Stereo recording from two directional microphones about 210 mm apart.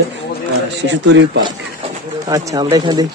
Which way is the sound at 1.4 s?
20° right (ahead or behind).